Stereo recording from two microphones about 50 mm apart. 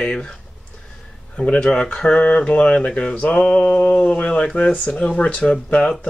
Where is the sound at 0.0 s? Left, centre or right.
Left.